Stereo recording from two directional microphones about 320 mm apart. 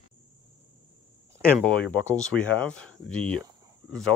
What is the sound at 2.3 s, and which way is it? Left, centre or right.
Speech, centre.